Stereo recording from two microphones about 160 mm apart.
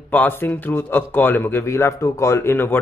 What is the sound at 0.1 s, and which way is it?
A man's voice, 10° left (ahead or behind).